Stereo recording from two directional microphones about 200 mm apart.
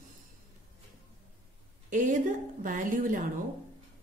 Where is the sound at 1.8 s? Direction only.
40° right (ahead or behind).